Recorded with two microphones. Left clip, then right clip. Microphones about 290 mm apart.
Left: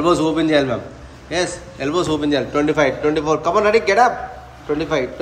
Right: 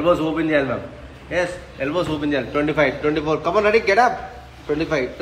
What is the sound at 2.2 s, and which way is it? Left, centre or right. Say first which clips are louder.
Speech: left 3 dB; left.